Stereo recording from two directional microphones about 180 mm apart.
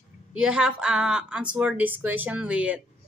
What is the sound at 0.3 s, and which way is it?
A woman's voice, 5° right (ahead or behind).